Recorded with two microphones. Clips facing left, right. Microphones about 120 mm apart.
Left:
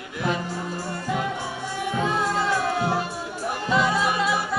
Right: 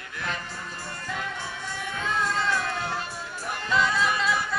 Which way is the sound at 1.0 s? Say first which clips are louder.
Left 6 dB; 15° left (ahead or behind).